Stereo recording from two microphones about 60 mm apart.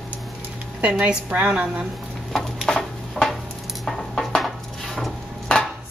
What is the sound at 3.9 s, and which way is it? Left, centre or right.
Dishes, centre.